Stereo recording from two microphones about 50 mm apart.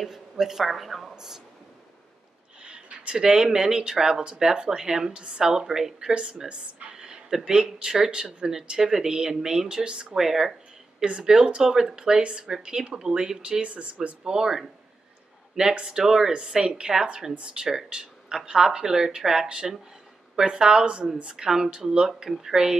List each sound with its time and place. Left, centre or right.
0.0 s speech: centre
2.6 s speech: right
14.0 s speech: centre